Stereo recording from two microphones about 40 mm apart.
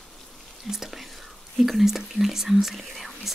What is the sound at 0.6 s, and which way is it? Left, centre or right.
Whispering, centre.